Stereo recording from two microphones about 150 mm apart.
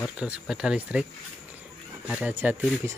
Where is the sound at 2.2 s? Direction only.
10° right (ahead or behind).